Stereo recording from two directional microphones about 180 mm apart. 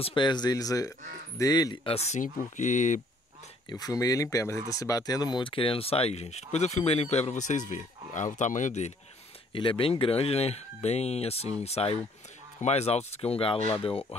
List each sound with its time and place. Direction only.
0.0 s speech: 25° left (ahead or behind)
2.0 s speech: 40° left (ahead or behind)
3.6 s speech: 20° left (ahead or behind); by 8.9 s 40° left (ahead or behind)
9.5 s speech: 30° left (ahead or behind)